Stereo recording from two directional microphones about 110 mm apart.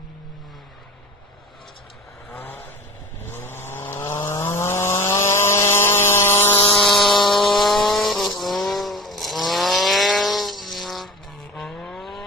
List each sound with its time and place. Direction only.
2.3 s vehicle: 15° left (ahead or behind)
6.8 s vehicle: centre (ahead or behind)